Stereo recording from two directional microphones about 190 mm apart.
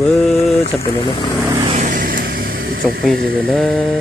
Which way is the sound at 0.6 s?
30° left (ahead or behind).